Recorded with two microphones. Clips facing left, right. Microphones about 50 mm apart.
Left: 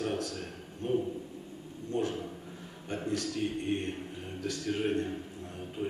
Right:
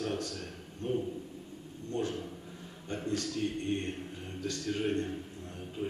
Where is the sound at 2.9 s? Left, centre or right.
Centre.